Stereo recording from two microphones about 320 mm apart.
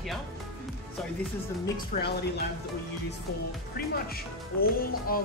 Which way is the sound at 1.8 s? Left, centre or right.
Left.